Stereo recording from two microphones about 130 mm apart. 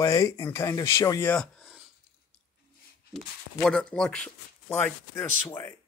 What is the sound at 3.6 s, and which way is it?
Speech, 5° left (ahead or behind).